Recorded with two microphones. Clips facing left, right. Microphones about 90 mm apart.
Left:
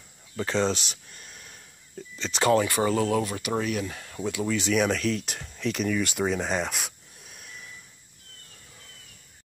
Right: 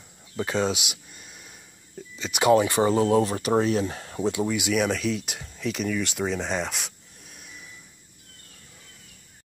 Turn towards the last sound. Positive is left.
turn(degrees=0)  # may be behind; listen again after turning